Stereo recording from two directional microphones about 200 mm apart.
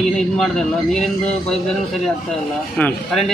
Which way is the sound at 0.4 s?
5° left (ahead or behind).